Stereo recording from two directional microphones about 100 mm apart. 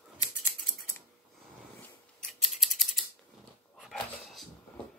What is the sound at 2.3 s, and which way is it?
Typing, centre (ahead or behind).